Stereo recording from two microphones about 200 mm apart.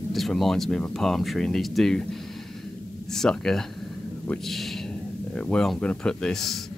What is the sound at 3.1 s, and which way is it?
Speech, centre (ahead or behind).